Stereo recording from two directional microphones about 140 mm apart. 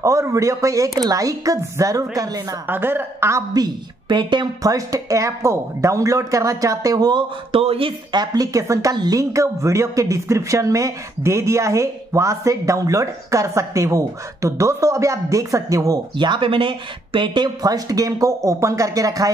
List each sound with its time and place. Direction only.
0.0 s speech: 20° right (ahead or behind)
2.7 s speech: 15° right (ahead or behind)